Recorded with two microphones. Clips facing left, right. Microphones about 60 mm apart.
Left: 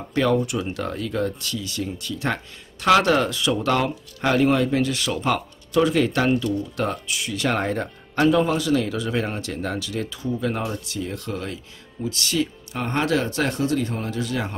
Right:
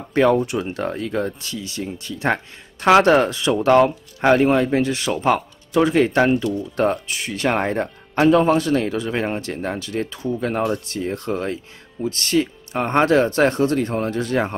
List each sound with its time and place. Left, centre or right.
0.1 s speech: right
8.3 s speech: right